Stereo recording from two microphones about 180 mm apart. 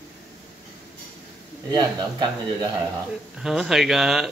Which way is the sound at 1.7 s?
25° right (ahead or behind).